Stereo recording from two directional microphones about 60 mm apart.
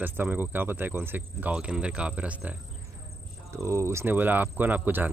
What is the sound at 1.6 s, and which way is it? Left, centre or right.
Speech, centre.